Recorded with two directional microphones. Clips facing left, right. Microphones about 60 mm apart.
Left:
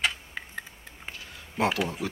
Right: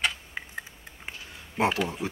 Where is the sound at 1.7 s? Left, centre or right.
Centre.